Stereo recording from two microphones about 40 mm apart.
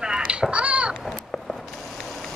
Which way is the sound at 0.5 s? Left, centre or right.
Right.